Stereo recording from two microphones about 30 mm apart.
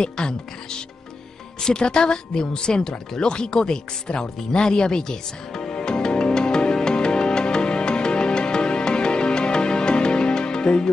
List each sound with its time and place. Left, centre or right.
0.0 s a woman's voice: left
6.0 s music: left